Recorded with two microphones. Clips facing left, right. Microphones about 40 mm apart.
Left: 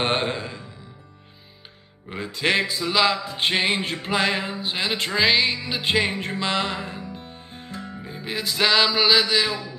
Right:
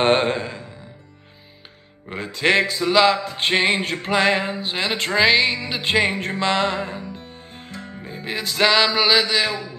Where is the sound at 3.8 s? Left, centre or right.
Right.